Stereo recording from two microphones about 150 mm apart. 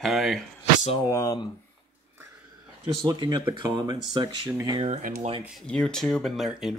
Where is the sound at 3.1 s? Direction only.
30° right (ahead or behind).